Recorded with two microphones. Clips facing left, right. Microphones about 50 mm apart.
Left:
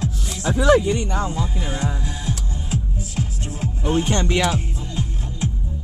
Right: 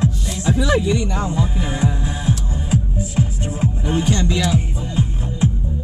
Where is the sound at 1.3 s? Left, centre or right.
Centre.